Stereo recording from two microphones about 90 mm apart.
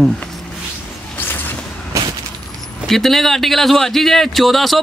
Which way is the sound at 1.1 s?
20° left (ahead or behind).